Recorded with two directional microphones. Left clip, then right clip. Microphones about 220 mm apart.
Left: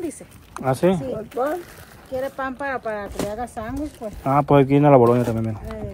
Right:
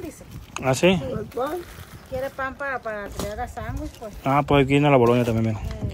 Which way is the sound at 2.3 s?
45° left (ahead or behind).